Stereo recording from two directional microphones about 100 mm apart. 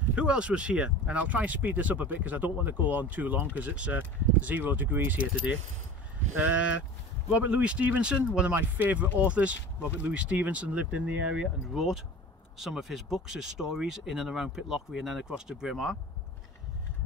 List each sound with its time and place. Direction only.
0.1 s speech: 10° right (ahead or behind)
11.7 s speech: centre (ahead or behind)